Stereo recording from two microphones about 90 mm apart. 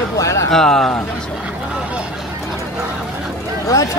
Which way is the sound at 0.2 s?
35° left (ahead or behind).